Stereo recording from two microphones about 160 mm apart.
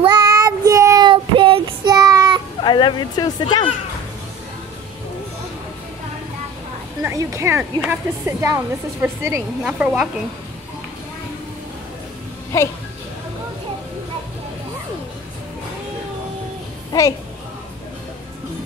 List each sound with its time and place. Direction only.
0.0 s child singing: 25° right (ahead or behind)
2.6 s speech: 30° left (ahead or behind)
7.0 s a woman's voice: 20° right (ahead or behind)
9.6 s speech: 5° right (ahead or behind)